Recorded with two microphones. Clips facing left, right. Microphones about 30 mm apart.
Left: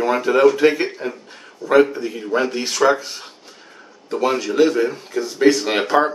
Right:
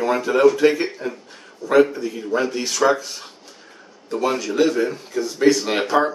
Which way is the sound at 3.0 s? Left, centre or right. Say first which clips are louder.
Left 1 dB; left.